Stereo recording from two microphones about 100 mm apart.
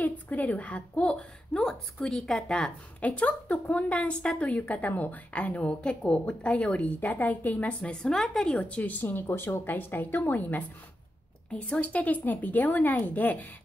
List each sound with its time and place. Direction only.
0.0 s a woman's voice: 15° left (ahead or behind)